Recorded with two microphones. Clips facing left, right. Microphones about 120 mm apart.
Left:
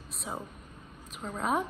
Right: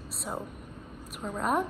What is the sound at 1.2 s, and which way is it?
Speech, centre (ahead or behind).